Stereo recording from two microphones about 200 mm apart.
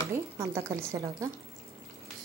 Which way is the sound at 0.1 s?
15° right (ahead or behind).